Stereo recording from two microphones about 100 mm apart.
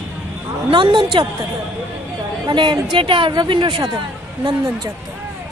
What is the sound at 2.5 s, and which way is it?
Speech, 50° right (ahead or behind).